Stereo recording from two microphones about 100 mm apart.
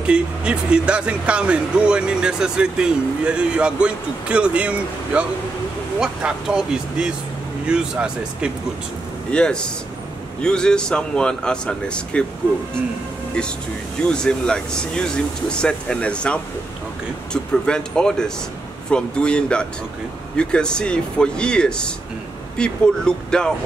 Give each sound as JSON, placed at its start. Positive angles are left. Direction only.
{"t": 0.0, "sound": "speech", "side_deg": -10}
{"t": 9.3, "sound": "speech", "side_deg": 10}
{"t": 13.9, "sound": "speech", "side_deg": 10}